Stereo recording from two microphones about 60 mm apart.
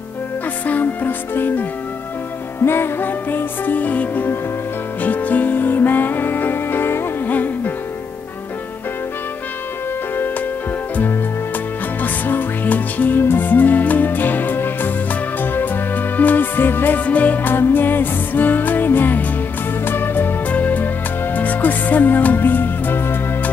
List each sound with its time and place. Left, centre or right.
0.7 s music: left
12.0 s music: left